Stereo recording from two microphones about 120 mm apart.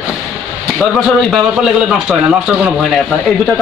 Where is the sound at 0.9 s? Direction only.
5° right (ahead or behind).